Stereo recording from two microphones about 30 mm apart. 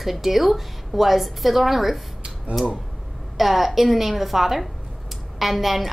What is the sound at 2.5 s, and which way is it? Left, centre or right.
Speech, right.